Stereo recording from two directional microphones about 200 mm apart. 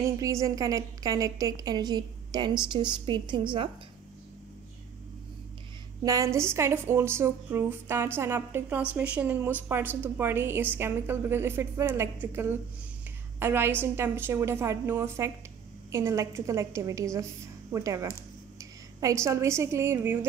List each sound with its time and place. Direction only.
0.0 s a woman's voice: 15° right (ahead or behind)
6.0 s a woman's voice: 15° right (ahead or behind)
18.6 s a sound: 15° right (ahead or behind)
19.2 s a woman's voice: 15° right (ahead or behind)